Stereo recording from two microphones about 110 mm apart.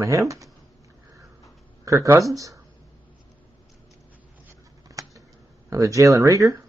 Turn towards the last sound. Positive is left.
turn(degrees=-30)  # may be behind; listen again after turning